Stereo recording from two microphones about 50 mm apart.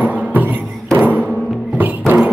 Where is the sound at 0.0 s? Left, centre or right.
Right.